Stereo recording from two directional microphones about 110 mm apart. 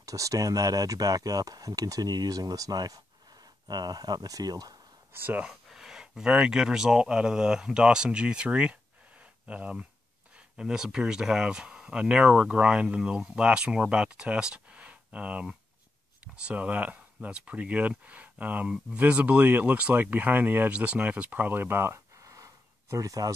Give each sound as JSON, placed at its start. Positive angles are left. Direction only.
{"t": 0.0, "sound": "speech", "side_deg": -30}
{"t": 5.1, "sound": "speech", "side_deg": -15}
{"t": 5.5, "sound": "speech", "side_deg": -5}
{"t": 9.2, "sound": "a sound", "side_deg": -10}
{"t": 10.3, "sound": "speech", "side_deg": -5}